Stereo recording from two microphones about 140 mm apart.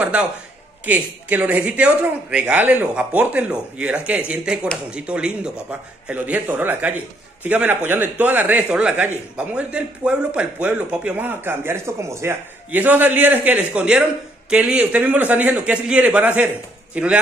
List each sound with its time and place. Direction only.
0.0 s speech: 10° right (ahead or behind)